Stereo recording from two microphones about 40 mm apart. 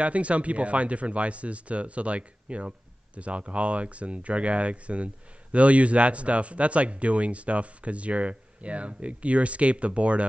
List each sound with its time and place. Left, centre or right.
0.0 s speech: right